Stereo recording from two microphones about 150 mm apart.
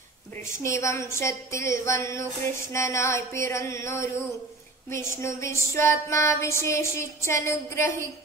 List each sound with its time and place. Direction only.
0.5 s a woman's voice: 20° left (ahead or behind)